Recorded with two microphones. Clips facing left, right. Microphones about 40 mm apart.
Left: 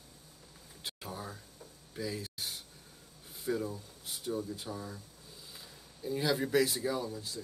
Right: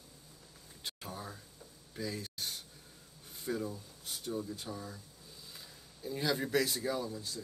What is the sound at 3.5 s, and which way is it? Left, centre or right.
A man's voice, centre.